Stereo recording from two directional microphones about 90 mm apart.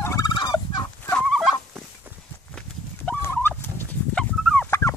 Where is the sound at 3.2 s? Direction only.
25° left (ahead or behind).